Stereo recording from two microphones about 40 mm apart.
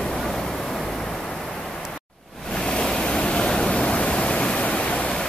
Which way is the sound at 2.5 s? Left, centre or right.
Left.